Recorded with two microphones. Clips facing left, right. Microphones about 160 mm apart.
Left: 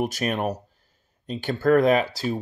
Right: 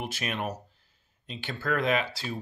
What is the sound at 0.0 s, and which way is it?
Speech, 45° left (ahead or behind).